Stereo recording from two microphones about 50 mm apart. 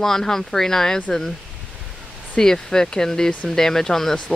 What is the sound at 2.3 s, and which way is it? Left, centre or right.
Speech, centre.